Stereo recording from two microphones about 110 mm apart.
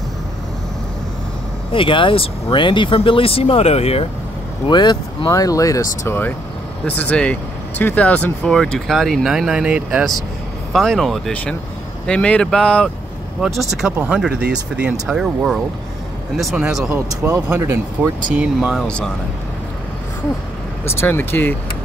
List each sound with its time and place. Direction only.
1.7 s speech: 50° left (ahead or behind); by 4.1 s 70° left (ahead or behind)
4.6 s speech: 45° left (ahead or behind)
5.3 s speech: 30° left (ahead or behind)
6.9 s speech: 15° left (ahead or behind); by 10.0 s 10° right (ahead or behind)
10.7 s speech: centre (ahead or behind)
13.4 s speech: centre (ahead or behind)
17.5 s speech: 20° right (ahead or behind)
18.4 s speech: 5° right (ahead or behind)
18.9 s speech: 10° left (ahead or behind)
20.8 s speech: 20° left (ahead or behind)